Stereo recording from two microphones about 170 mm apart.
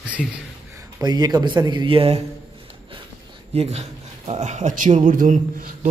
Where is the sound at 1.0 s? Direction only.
25° right (ahead or behind).